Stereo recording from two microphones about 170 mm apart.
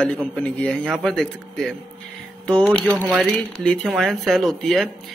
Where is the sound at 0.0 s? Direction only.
5° left (ahead or behind).